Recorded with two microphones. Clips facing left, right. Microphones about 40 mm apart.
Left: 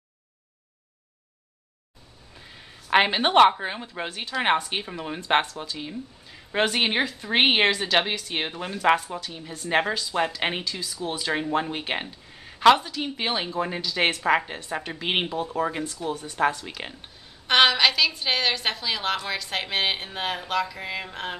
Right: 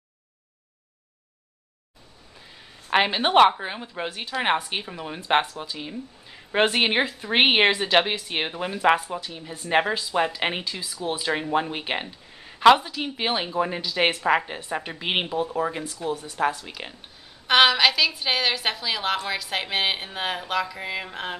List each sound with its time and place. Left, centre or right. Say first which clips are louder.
2.3 s a woman's voice: left 2 dB; centre
10.6 s a woman's voice: even; centre